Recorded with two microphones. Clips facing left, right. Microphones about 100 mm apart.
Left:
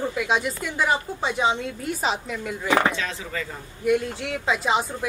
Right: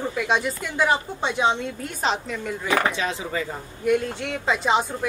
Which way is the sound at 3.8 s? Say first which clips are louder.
Even; centre (ahead or behind).